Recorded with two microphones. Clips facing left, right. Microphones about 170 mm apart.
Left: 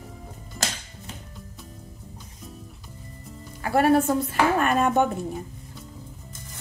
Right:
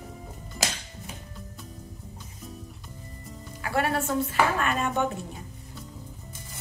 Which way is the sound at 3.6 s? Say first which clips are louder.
Left 7 dB; 45° left (ahead or behind).